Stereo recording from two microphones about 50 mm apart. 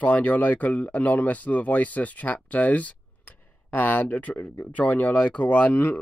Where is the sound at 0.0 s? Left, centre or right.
Left.